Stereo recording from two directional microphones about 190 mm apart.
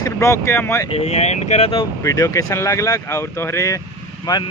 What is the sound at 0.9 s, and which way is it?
Speech, 35° left (ahead or behind).